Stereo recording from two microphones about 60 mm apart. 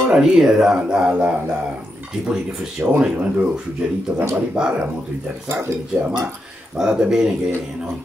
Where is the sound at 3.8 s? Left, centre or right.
Centre.